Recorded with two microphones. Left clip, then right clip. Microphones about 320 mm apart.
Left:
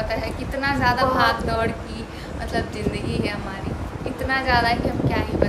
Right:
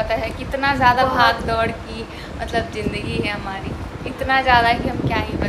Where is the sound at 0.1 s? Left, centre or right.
Centre.